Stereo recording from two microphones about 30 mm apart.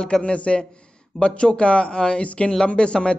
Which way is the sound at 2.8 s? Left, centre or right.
Left.